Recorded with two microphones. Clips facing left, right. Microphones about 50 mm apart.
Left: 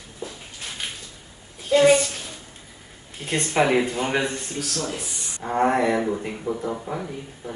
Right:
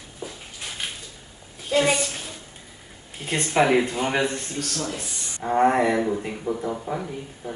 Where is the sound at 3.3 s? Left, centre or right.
Centre.